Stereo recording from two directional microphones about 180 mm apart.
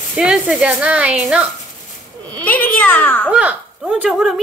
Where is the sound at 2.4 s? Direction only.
10° left (ahead or behind).